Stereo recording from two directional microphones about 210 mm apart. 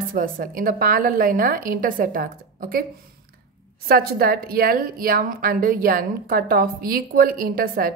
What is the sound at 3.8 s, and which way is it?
A woman's voice, 45° right (ahead or behind).